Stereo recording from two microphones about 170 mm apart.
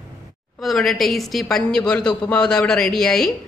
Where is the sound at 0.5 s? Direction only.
Centre (ahead or behind).